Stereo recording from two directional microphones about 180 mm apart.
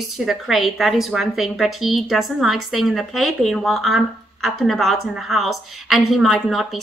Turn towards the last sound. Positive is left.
turn(degrees=0)  # may be behind; listen again after turning